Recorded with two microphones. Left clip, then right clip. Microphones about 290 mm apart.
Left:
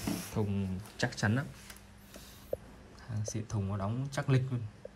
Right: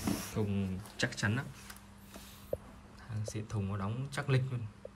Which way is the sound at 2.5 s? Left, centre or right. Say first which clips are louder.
Left 1 dB; centre.